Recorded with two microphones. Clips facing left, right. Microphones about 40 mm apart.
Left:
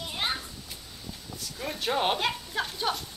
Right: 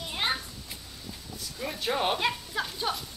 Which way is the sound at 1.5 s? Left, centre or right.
Centre.